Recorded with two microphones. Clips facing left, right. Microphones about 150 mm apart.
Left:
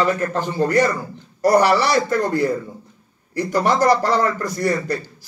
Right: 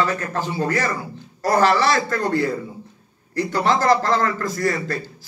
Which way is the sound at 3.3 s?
10° left (ahead or behind).